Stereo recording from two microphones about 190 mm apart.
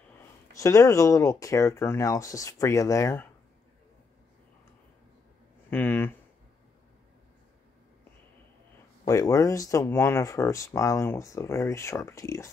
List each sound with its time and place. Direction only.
0.6 s speech: 15° left (ahead or behind)
5.7 s speech: 10° left (ahead or behind)
9.0 s speech: 20° left (ahead or behind)